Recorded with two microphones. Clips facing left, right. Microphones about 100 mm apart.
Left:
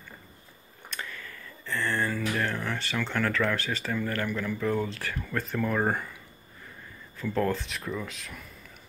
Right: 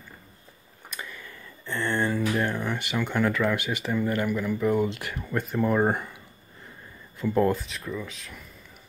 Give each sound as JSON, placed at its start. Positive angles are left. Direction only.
{"t": 0.8, "sound": "speech", "side_deg": -10}
{"t": 7.2, "sound": "speech", "side_deg": -20}
{"t": 7.5, "sound": "speech", "side_deg": 0}